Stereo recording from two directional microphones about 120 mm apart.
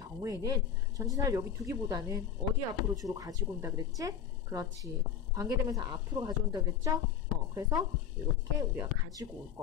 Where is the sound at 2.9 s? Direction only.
30° right (ahead or behind).